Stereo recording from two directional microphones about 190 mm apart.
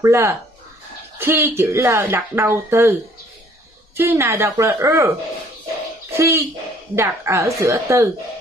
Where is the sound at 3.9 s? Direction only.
10° right (ahead or behind).